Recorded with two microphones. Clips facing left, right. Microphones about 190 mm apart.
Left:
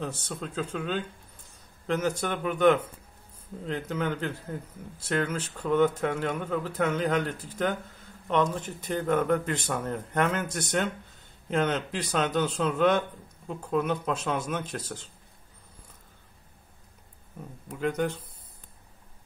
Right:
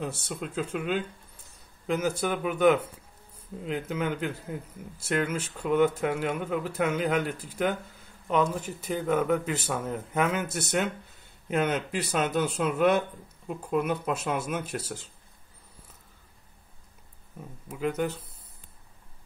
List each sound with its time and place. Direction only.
0.0 s a man's voice: 10° right (ahead or behind)
17.6 s speech: 5° right (ahead or behind)